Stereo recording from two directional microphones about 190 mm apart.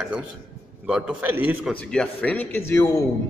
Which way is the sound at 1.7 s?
5° left (ahead or behind).